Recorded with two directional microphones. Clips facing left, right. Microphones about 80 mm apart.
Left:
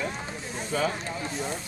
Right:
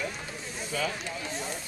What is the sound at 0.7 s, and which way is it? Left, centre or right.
Speech, left.